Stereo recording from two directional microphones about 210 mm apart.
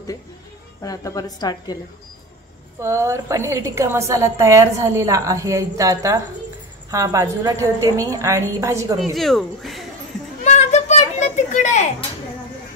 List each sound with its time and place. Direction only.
0.8 s a woman's voice: 15° left (ahead or behind)
2.8 s a woman's voice: 15° right (ahead or behind)
9.0 s speech: centre (ahead or behind)
10.4 s children playing: 35° left (ahead or behind)